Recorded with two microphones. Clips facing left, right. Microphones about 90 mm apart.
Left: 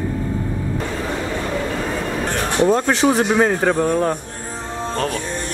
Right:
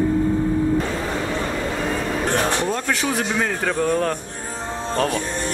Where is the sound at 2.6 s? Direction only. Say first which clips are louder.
Left 7 dB; 25° left (ahead or behind).